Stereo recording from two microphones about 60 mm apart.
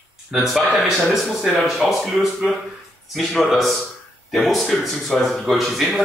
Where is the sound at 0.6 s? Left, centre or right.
Right.